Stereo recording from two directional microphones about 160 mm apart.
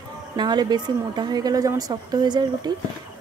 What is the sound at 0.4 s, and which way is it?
A woman's voice, 25° right (ahead or behind).